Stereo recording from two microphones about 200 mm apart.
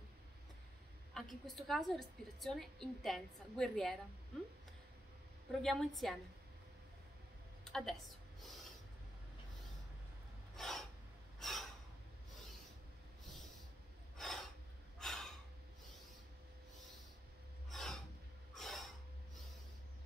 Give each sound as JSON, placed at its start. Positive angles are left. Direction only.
{"t": 1.1, "sound": "a woman's voice", "side_deg": 0}
{"t": 5.5, "sound": "a woman's voice", "side_deg": 0}
{"t": 7.6, "sound": "a sound", "side_deg": 0}
{"t": 10.5, "sound": "filing", "side_deg": 0}
{"t": 11.3, "sound": "gasp", "side_deg": 0}
{"t": 14.1, "sound": "a sound", "side_deg": 0}
{"t": 15.0, "sound": "snort", "side_deg": 0}
{"t": 17.6, "sound": "gasp", "side_deg": 0}
{"t": 18.5, "sound": "snort", "side_deg": 0}